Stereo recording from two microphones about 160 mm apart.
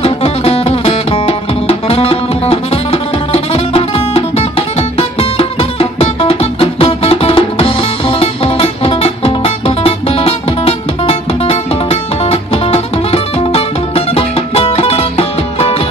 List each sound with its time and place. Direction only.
0.0 s music: 40° left (ahead or behind)